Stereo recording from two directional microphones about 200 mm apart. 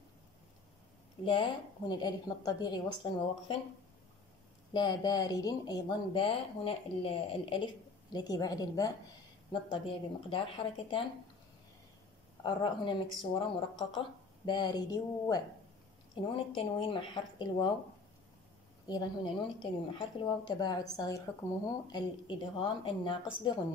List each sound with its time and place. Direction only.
1.2 s a woman's voice: 25° left (ahead or behind)
4.7 s a woman's voice: 20° left (ahead or behind)
12.4 s a woman's voice: 20° left (ahead or behind)
18.9 s a woman's voice: 20° left (ahead or behind)